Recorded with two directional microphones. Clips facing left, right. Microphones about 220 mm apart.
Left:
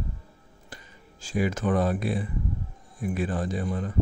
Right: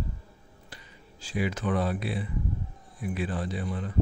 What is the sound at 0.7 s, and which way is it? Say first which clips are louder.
A man's voice: left 4 dB; 45° left (ahead or behind).